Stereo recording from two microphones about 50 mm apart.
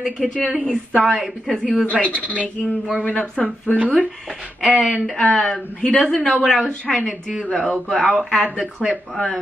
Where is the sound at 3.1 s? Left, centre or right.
Left.